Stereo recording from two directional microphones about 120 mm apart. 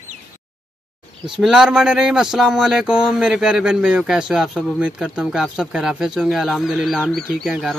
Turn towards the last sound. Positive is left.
turn(degrees=0)  # may be behind; listen again after turning